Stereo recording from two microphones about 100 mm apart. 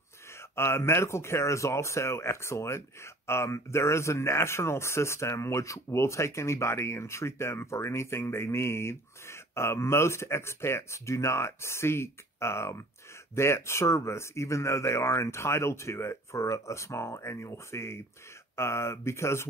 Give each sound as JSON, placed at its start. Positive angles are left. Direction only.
{"t": 0.4, "sound": "speech", "side_deg": 25}